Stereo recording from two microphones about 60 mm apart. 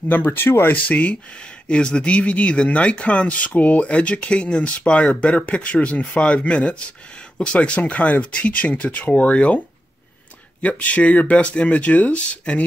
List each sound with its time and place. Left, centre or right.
0.1 s speech: left
0.8 s speech: left
10.6 s speech: left